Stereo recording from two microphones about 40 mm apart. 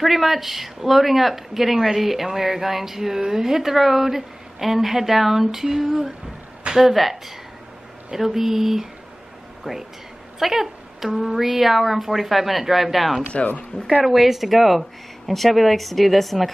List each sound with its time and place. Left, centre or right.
0.0 s speech: centre
10.4 s a woman's voice: centre
13.4 s speech: left
14.0 s a woman's voice: centre